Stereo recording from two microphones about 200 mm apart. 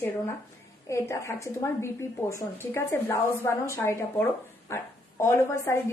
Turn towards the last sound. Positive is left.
turn(degrees=15)  # may be behind; listen again after turning